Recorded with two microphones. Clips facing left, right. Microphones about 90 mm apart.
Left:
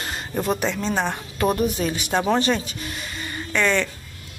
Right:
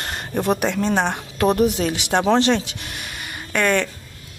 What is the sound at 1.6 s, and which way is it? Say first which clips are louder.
Speech: right 4 dB; 80° right.